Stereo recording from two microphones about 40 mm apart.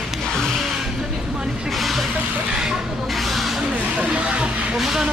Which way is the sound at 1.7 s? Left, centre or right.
Centre.